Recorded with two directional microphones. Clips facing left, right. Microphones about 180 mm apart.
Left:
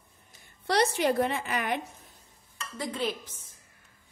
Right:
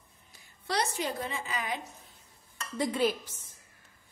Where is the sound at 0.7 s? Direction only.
65° left (ahead or behind).